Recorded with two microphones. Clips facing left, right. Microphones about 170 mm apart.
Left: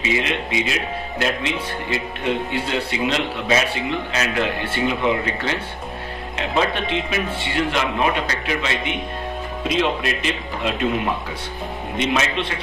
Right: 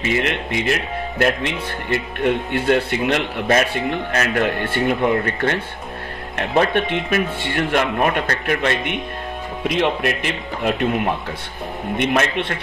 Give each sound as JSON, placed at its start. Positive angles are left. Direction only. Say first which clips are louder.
{"t": 0.0, "sound": "speech", "louder": "right 2 dB", "side_deg": -55}
{"t": 12.0, "sound": "speech", "louder": "right 2 dB", "side_deg": -55}